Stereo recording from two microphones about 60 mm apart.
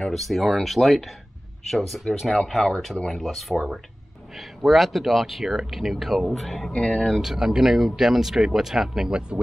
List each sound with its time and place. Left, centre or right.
0.1 s speech: centre
6.7 s speech: centre
7.1 s speech: centre